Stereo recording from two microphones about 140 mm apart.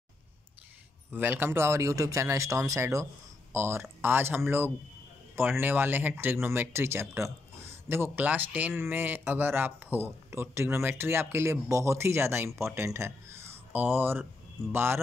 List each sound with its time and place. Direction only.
1.1 s speech: 15° right (ahead or behind)